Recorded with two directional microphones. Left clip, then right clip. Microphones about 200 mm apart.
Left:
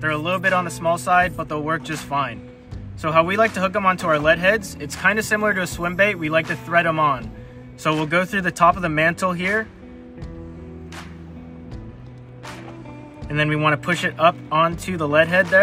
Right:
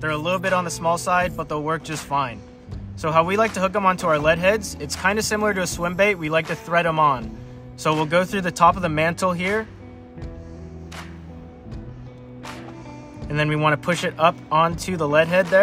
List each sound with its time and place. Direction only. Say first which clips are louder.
0.0 s speech: left 2 dB; 20° right (ahead or behind)
13.3 s speech: left 1 dB; 25° right (ahead or behind)